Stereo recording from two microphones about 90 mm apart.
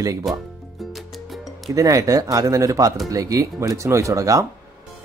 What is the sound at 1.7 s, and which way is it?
Speech, 35° right (ahead or behind).